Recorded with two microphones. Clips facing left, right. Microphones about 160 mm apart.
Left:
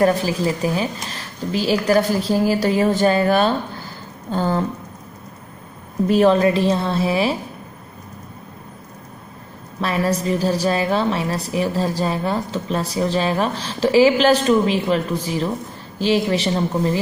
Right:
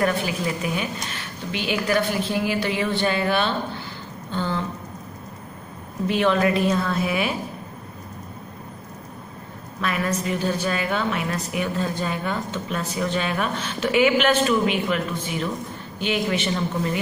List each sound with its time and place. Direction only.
0.0 s a woman's voice: 35° left (ahead or behind)
6.0 s a woman's voice: 35° left (ahead or behind)
9.8 s a woman's voice: 35° left (ahead or behind)